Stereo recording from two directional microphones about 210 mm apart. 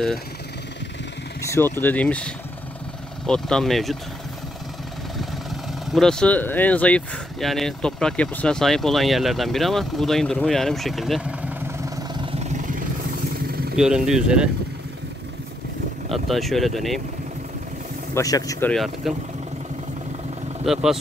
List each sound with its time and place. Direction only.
1.4 s speech: 10° left (ahead or behind)
5.2 s speech: centre (ahead or behind); by 12.7 s 35° right (ahead or behind)
13.5 s vehicle: 45° right (ahead or behind)
13.7 s speech: 5° right (ahead or behind)
16.1 s speech: centre (ahead or behind)
18.1 s speech: 15° left (ahead or behind)
18.7 s speech: centre (ahead or behind)
20.6 s speech: centre (ahead or behind)